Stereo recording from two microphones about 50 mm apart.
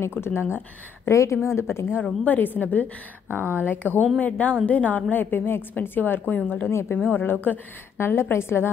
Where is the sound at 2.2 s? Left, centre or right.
Left.